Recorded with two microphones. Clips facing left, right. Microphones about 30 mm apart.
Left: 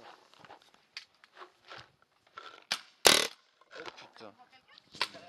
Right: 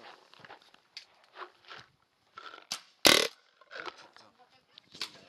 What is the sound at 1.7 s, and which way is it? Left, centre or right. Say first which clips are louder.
Biting: even; centre.